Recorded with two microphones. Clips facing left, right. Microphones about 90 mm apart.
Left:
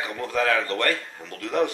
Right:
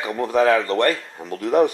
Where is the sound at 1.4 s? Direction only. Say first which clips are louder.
Right 7 dB; 40° right (ahead or behind).